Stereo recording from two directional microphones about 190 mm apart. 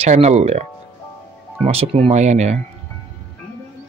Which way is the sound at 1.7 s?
30° right (ahead or behind).